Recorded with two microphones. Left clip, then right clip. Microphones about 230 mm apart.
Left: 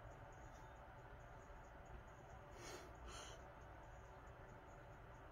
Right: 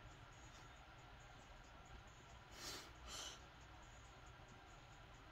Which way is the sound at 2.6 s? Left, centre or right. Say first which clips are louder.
Right 4 dB; centre.